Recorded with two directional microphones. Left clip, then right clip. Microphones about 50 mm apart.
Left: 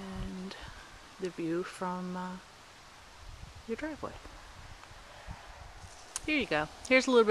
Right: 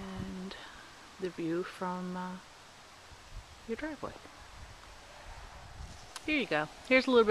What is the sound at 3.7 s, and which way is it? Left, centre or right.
Speech, centre.